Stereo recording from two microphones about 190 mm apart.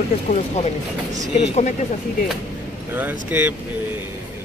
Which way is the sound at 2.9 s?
10° right (ahead or behind).